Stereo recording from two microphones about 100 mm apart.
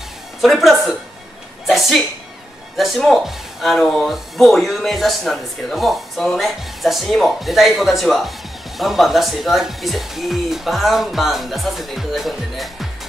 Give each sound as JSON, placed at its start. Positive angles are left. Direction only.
{"t": 0.4, "sound": "speech", "side_deg": 0}